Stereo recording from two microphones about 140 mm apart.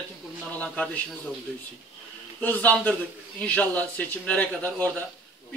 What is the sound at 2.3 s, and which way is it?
Speech, 10° left (ahead or behind).